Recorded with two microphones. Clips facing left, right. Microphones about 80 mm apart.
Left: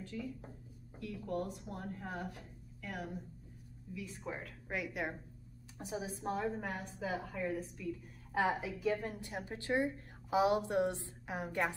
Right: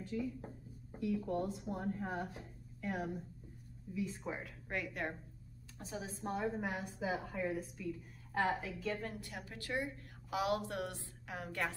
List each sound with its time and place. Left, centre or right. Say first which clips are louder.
0.0 s speech: right 3 dB; centre
4.3 s a woman's voice: even; centre
4.6 s a woman's voice: left 1 dB; centre
5.8 s speech: left 4 dB; centre
6.1 s a woman's voice: even; centre
8.3 s a woman's voice: left 2 dB; centre